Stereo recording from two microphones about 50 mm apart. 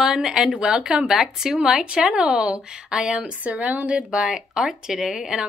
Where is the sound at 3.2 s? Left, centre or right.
Right.